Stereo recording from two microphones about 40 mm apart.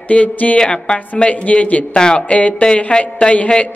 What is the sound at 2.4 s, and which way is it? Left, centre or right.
Speech, left.